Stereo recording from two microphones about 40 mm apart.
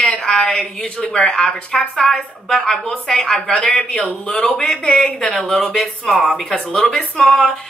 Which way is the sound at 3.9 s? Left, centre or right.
Left.